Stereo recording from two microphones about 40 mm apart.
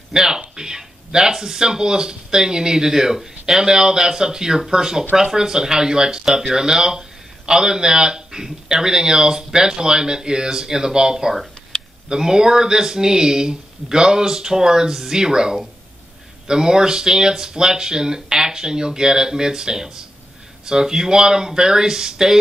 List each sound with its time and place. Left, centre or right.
0.1 s speech: centre